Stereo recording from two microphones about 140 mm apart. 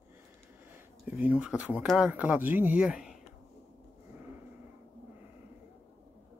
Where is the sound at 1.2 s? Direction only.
10° right (ahead or behind).